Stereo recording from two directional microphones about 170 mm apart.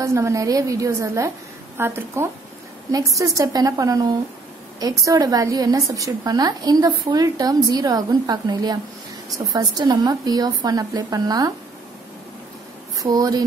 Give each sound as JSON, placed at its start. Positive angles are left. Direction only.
{"t": 0.0, "sound": "a woman's voice", "side_deg": -15}
{"t": 13.0, "sound": "a woman's voice", "side_deg": -20}